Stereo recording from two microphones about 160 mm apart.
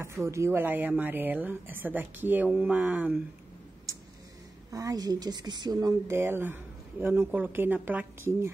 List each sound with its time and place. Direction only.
0.0 s a woman's voice: 15° right (ahead or behind)
4.6 s a woman's voice: 20° right (ahead or behind)